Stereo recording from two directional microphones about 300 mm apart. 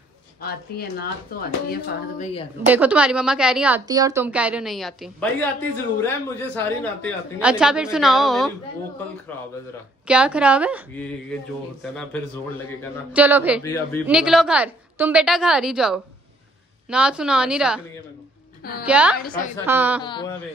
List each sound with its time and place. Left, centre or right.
0.4 s a woman's voice: left
1.7 s a sound: left
2.6 s a woman's voice: centre
10.0 s a woman's voice: centre
18.6 s a woman's voice: left
18.9 s a woman's voice: centre
19.1 s a sound: left
19.6 s a woman's voice: centre
20.0 s speech: centre